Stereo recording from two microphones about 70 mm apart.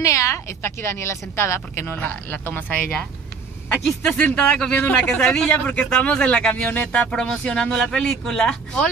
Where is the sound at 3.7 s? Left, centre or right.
Centre.